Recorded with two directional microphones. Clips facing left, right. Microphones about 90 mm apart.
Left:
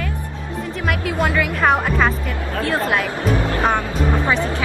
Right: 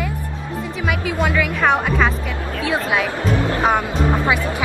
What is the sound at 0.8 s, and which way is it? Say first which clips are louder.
Speech: even; centre (ahead or behind).